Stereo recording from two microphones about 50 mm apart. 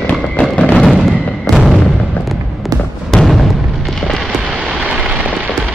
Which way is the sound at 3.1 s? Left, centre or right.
Centre.